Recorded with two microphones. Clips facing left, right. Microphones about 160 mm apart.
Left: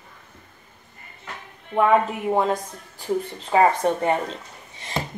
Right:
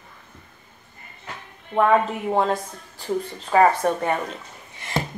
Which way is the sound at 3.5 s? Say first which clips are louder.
Right 1 dB; 20° left (ahead or behind).